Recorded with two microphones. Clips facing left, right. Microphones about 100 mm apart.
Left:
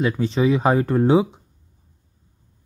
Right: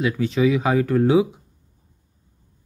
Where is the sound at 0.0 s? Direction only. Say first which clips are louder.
Even; 30° left (ahead or behind).